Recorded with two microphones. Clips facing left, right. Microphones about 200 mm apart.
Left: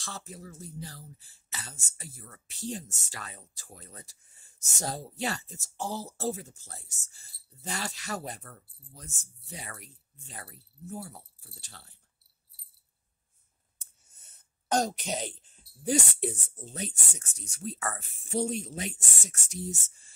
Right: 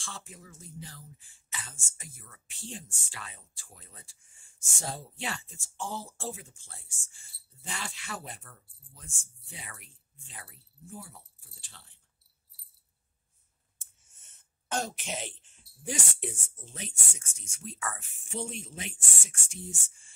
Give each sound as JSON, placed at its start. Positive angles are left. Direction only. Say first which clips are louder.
{"t": 0.0, "sound": "speech", "louder": "left 4 dB", "side_deg": 40}
{"t": 13.7, "sound": "speech", "louder": "left 2 dB", "side_deg": 40}